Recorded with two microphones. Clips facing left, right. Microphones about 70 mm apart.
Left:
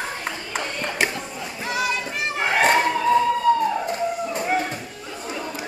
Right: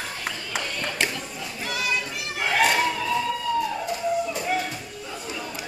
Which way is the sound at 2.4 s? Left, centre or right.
Left.